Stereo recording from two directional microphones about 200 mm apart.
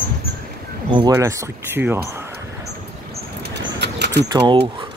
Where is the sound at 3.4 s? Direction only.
55° right (ahead or behind).